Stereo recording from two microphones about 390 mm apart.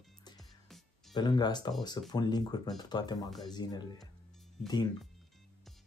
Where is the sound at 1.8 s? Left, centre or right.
Centre.